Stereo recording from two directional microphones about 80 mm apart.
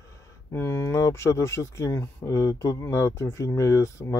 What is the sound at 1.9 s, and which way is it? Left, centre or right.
Speech, left.